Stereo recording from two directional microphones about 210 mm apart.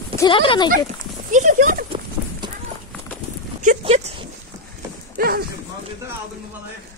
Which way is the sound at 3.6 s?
35° right (ahead or behind).